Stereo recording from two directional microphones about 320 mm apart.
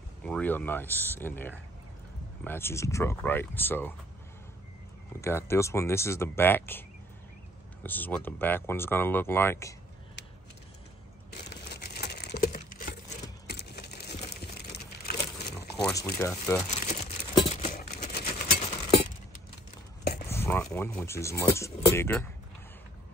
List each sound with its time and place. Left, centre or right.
0.2 s speech: centre
5.2 s speech: centre
7.8 s speech: centre
11.7 s a sound: left
15.0 s crumpling: left
15.7 s a sound: centre
16.2 s speech: centre
16.6 s crumpling: left
20.2 s speech: centre